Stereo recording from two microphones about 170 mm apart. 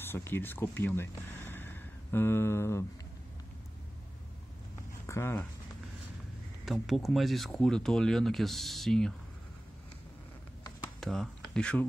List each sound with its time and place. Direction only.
0.0 s speech: 15° left (ahead or behind)
5.0 s speech: 15° left (ahead or behind)
6.6 s speech: centre (ahead or behind)
11.0 s speech: centre (ahead or behind)